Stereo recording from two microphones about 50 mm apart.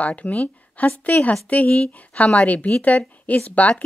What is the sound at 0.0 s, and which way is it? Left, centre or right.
A woman's voice, left.